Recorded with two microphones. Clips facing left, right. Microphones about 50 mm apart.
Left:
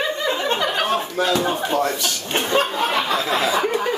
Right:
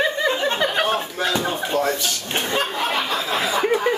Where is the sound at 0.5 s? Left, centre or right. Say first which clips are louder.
Even; centre.